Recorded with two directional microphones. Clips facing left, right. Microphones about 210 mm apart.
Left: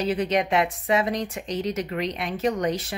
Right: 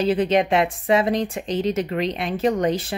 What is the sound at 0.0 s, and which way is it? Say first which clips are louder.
Speech: right 5 dB; 30° right (ahead or behind).